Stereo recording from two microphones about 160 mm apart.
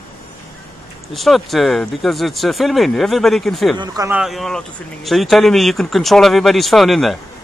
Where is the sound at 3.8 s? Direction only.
25° right (ahead or behind).